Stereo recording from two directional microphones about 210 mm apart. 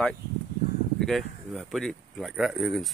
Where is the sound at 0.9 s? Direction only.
Centre (ahead or behind).